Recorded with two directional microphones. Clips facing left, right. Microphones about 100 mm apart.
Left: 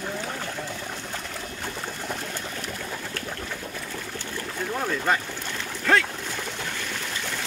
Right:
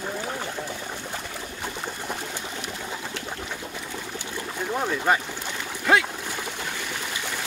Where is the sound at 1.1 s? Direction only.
10° right (ahead or behind).